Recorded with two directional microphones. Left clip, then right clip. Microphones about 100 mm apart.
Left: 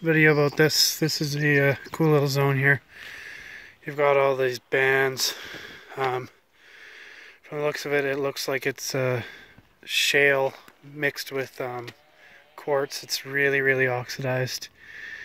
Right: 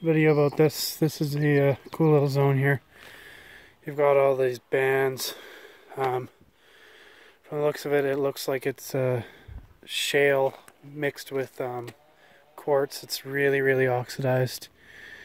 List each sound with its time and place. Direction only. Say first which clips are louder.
0.0 s speech: left 2 dB; centre (ahead or behind)
0.6 s speech: left 3 dB; 15° right (ahead or behind)
0.9 s speech: left 1 dB; 30° right (ahead or behind)
1.7 s speech: even; 10° right (ahead or behind); by 3.6 s 30° right (ahead or behind)
3.8 s speech: even; 15° right (ahead or behind)
6.0 s speech: even; 30° right (ahead or behind)
6.8 s a sound: left 7 dB; 40° right (ahead or behind)
8.5 s speech: left 2 dB; 15° right (ahead or behind)
12.5 s a sound: right 1 dB; 30° right (ahead or behind)
12.8 s speech: left 2 dB; 40° right (ahead or behind)